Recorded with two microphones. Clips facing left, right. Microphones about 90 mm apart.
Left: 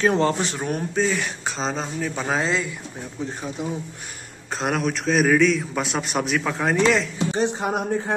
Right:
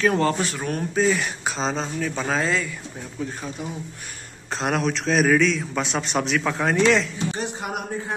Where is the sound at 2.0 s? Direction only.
15° left (ahead or behind).